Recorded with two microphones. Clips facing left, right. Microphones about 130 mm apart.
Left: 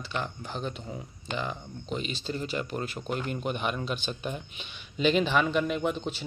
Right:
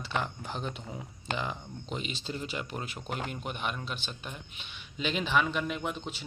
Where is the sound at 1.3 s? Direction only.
15° right (ahead or behind).